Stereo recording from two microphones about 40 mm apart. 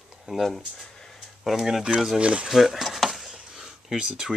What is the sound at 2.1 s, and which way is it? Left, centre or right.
Speech, right.